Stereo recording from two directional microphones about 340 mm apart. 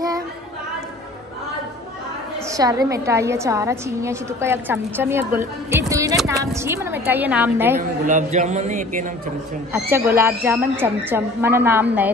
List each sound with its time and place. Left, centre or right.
2.5 s a woman's voice: centre
8.1 s speech: right
9.7 s a woman's voice: centre